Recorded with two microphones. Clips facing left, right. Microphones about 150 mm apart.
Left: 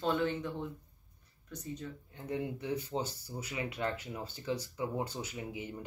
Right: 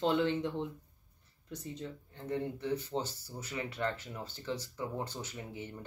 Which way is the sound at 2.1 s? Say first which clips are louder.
Right 1 dB; 10° left (ahead or behind).